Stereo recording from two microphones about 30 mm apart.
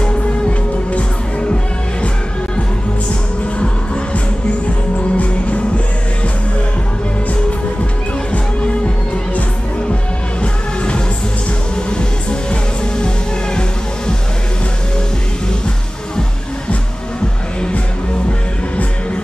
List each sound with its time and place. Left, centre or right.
0.0 s music: left
5.1 s music: left
12.0 s music: left